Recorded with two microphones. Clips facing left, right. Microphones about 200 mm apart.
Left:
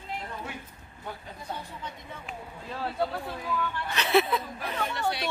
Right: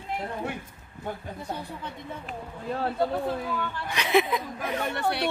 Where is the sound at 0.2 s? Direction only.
50° right (ahead or behind).